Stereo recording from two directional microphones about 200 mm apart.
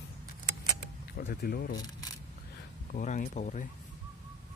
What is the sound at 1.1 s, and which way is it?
Speech, 50° left (ahead or behind).